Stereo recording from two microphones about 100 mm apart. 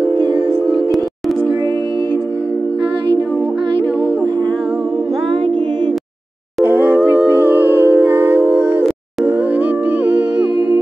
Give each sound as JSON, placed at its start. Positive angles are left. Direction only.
{"t": 6.6, "sound": "humming", "side_deg": -20}
{"t": 9.2, "sound": "music", "side_deg": -15}